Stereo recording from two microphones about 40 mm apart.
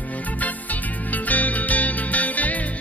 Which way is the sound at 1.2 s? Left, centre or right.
Left.